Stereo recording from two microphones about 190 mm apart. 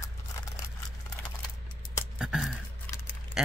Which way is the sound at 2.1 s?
5° right (ahead or behind).